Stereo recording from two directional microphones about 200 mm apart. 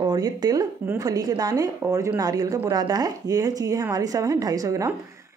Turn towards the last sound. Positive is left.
turn(degrees=-15)  # may be behind; listen again after turning